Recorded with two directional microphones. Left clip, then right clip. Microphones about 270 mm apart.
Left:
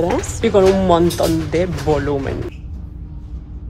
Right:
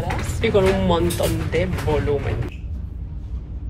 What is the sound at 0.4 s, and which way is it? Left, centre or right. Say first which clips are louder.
Speech: left 4 dB; left.